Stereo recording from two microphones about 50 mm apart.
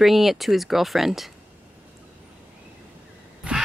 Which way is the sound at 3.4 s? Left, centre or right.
Right.